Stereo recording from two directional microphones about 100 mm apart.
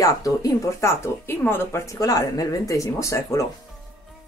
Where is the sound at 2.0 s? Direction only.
35° left (ahead or behind).